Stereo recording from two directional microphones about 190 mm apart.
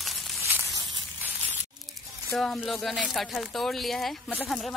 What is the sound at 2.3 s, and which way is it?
Speech, centre (ahead or behind).